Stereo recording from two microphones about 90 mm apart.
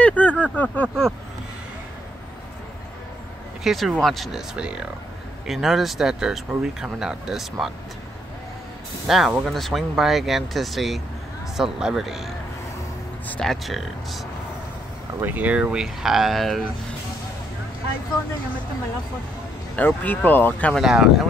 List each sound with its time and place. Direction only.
0.0 s a sound: 15° left (ahead or behind)
3.6 s speech: centre (ahead or behind)
9.0 s speech: 5° right (ahead or behind)
13.4 s speech: centre (ahead or behind)
15.2 s speech: 15° right (ahead or behind); by 16.6 s centre (ahead or behind)
19.7 s speech: 20° left (ahead or behind)
20.7 s speech: 5° right (ahead or behind)